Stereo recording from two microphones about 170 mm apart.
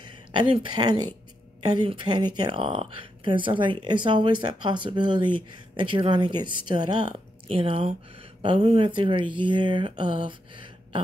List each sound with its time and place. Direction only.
0.3 s speech: 30° right (ahead or behind)